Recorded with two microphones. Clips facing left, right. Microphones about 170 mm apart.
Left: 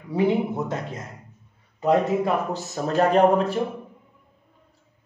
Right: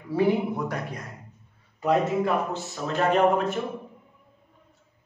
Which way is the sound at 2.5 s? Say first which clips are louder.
Left 5 dB; 35° left (ahead or behind).